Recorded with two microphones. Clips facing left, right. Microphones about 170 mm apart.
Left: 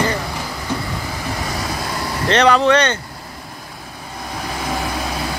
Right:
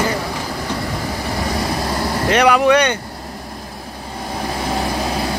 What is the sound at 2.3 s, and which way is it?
Speech, 10° right (ahead or behind).